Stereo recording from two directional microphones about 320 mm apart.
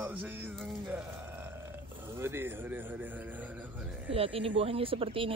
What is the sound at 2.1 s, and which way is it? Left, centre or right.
Speech, centre.